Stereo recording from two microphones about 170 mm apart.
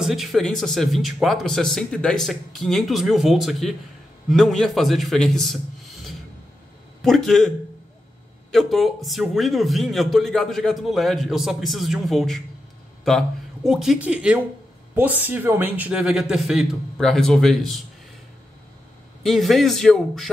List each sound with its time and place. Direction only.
0.0 s a man's voice: centre (ahead or behind)
7.0 s a man's voice: centre (ahead or behind)
13.7 s a man's voice: 5° right (ahead or behind)
19.2 s a man's voice: centre (ahead or behind)